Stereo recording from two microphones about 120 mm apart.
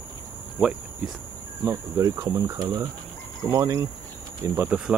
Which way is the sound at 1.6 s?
30° right (ahead or behind).